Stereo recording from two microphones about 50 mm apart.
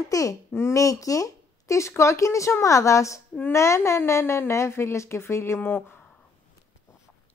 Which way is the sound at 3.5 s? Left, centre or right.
Left.